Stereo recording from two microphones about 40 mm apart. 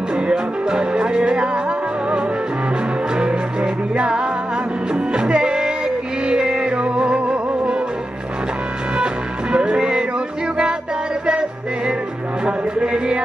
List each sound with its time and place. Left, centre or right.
0.1 s music: centre
3.2 s music: right
8.9 s music: right
12.4 s music: right